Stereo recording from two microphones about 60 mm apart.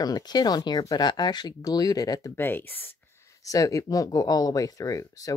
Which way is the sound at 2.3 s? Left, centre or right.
Left.